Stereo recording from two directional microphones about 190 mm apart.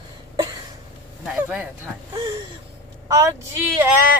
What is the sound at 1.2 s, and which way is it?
Speech, 10° right (ahead or behind).